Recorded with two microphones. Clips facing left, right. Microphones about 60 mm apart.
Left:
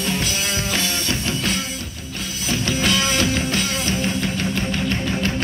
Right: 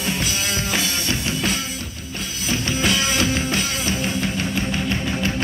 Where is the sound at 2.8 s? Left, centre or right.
Centre.